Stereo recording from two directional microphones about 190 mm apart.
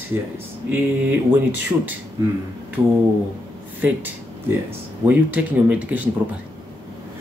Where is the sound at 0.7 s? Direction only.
10° right (ahead or behind).